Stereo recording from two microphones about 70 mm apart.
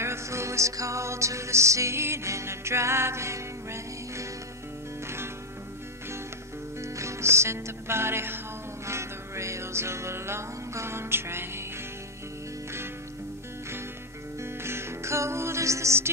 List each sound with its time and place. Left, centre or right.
0.0 s music: right
6.8 s music: right
14.4 s music: right